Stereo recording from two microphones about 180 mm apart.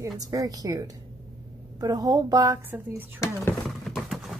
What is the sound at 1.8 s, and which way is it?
A woman's voice, 20° right (ahead or behind).